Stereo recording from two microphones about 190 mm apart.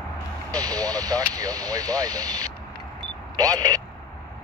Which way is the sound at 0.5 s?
20° right (ahead or behind).